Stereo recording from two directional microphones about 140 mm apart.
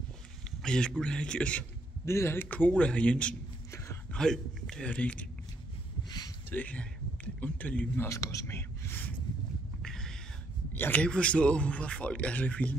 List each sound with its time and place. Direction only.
0.6 s a man's voice: 5° left (ahead or behind)
2.0 s speech: 20° left (ahead or behind)
3.7 s a sound: 20° left (ahead or behind)
4.1 s a man's voice: 5° left (ahead or behind)
6.0 s a sound: 30° left (ahead or behind)
6.5 s speech: 10° left (ahead or behind)
8.1 s speech: 25° left (ahead or behind)
9.8 s cat: 5° left (ahead or behind)
10.7 s speech: 15° left (ahead or behind)